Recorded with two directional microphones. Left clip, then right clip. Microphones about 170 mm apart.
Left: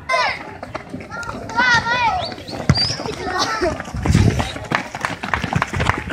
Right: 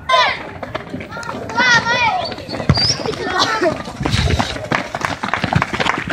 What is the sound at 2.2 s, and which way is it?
Clip-clop, 5° right (ahead or behind).